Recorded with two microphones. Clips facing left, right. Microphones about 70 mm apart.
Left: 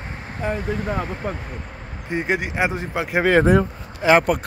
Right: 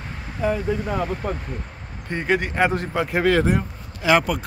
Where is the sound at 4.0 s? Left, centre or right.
Left.